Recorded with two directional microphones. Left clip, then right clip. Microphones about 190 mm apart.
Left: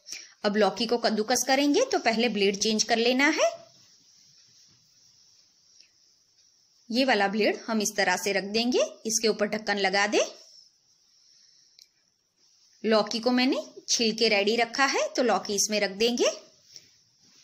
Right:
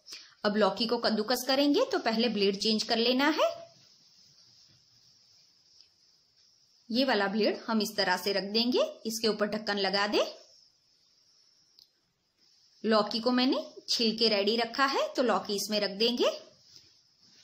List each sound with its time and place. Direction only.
0.0 s a woman's voice: 15° left (ahead or behind)
6.9 s a woman's voice: 15° left (ahead or behind)
12.8 s a woman's voice: 15° left (ahead or behind)